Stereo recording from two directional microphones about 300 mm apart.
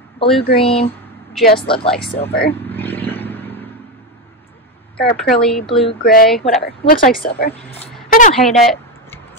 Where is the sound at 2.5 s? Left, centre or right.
Centre.